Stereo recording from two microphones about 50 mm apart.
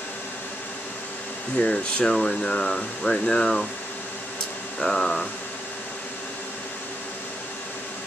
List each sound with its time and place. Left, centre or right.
1.6 s speech: centre
4.7 s speech: centre